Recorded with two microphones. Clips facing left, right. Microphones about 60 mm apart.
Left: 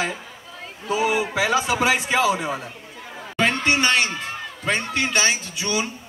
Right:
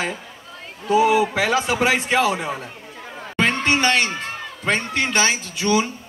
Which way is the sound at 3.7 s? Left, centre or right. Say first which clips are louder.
Right 1 dB; right.